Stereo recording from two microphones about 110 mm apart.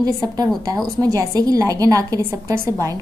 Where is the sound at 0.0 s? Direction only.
35° right (ahead or behind).